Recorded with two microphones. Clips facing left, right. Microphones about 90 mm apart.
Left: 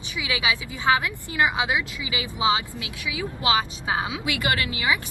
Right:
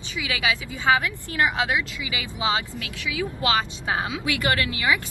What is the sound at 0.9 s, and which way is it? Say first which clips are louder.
Speech: right 1 dB; 15° left (ahead or behind).